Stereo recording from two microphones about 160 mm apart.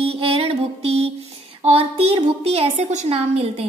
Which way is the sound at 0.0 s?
40° right (ahead or behind).